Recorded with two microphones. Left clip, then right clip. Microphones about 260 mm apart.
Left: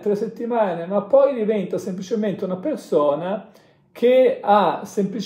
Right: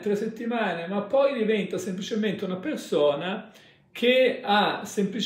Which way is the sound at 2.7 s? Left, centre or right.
Left.